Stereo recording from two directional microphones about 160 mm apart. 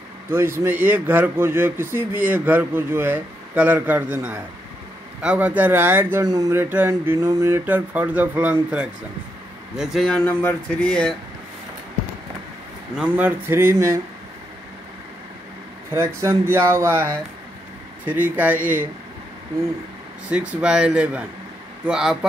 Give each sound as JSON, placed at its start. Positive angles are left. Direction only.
{"t": 0.3, "sound": "a man's voice", "side_deg": -15}
{"t": 12.9, "sound": "a man's voice", "side_deg": -10}
{"t": 16.2, "sound": "a man's voice", "side_deg": -15}
{"t": 20.2, "sound": "a man's voice", "side_deg": -5}